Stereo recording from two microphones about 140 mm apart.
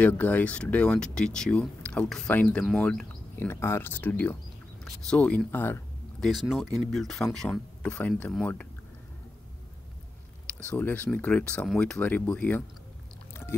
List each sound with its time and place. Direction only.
0.0 s speech: 10° left (ahead or behind)
3.3 s speech: 15° left (ahead or behind)
6.2 s speech: centre (ahead or behind)
10.7 s speech: 10° left (ahead or behind)